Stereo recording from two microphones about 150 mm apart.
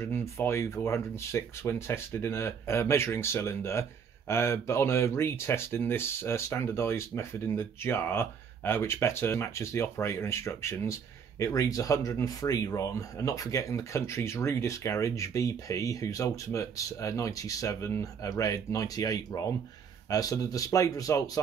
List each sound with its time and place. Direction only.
0.0 s speech: 15° left (ahead or behind)